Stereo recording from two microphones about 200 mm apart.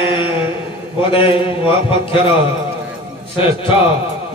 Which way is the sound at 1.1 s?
25° left (ahead or behind).